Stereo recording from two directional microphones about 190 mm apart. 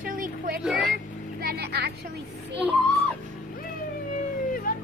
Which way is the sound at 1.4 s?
55° right (ahead or behind).